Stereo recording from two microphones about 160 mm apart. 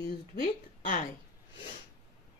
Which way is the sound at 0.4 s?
55° left (ahead or behind).